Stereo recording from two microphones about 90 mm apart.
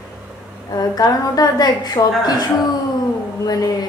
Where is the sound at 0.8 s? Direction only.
45° left (ahead or behind).